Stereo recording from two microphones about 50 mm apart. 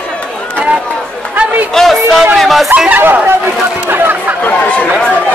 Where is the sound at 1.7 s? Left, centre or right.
Centre.